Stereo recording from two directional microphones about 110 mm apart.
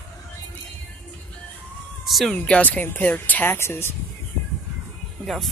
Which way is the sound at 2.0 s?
Centre (ahead or behind).